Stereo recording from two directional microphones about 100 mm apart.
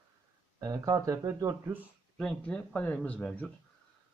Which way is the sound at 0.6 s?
35° right (ahead or behind).